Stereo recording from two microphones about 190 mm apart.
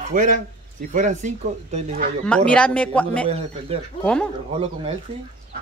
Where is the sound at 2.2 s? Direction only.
5° left (ahead or behind).